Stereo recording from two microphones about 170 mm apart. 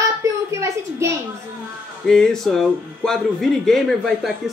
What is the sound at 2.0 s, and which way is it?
Speech, 5° left (ahead or behind).